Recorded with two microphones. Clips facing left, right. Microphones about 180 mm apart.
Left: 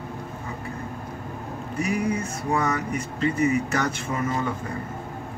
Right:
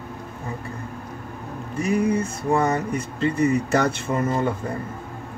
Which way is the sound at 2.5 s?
30° right (ahead or behind).